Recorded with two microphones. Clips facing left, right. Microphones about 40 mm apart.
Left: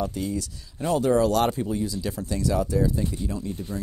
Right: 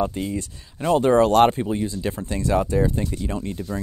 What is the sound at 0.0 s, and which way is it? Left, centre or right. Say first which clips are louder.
Speech: right 3 dB; right.